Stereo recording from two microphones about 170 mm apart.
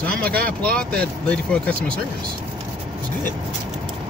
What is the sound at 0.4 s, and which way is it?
Speech, 60° right (ahead or behind).